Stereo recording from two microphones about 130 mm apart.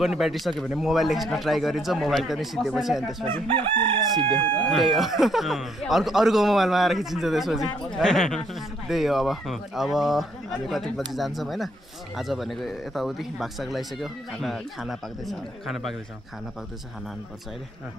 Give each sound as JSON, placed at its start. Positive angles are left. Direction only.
{"t": 0.0, "sound": "speech", "side_deg": 0}
{"t": 3.3, "sound": "chicken", "side_deg": -45}
{"t": 4.6, "sound": "speech", "side_deg": 5}